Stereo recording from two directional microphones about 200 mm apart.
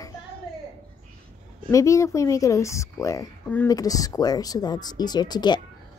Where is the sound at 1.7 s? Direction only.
15° left (ahead or behind).